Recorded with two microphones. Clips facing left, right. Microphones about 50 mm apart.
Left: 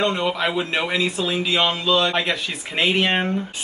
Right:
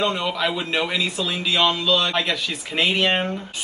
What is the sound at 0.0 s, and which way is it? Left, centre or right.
Speech, centre.